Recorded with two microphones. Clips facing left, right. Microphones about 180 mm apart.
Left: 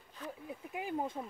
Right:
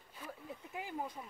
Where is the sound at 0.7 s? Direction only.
20° left (ahead or behind).